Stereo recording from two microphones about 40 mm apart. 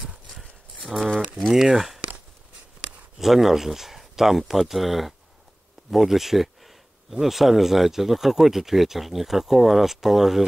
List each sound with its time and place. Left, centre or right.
1.0 s a sound: centre
1.5 s speech: centre
3.2 s speech: centre